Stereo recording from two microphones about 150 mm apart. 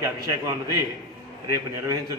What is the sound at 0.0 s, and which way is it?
A man's voice, 20° right (ahead or behind).